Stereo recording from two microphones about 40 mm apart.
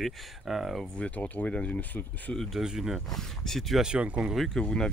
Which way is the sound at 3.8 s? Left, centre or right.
Right.